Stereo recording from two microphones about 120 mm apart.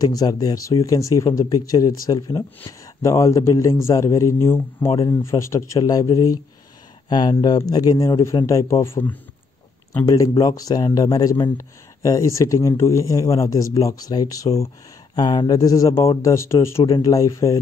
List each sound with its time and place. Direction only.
0.0 s a man's voice: 30° left (ahead or behind)
10.0 s a man's voice: 35° left (ahead or behind)